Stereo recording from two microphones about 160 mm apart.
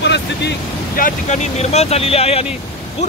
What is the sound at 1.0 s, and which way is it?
Speech, 55° left (ahead or behind).